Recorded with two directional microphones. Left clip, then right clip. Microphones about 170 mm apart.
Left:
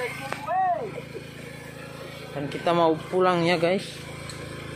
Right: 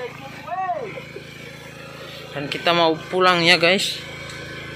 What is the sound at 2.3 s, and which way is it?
Speech, 5° left (ahead or behind).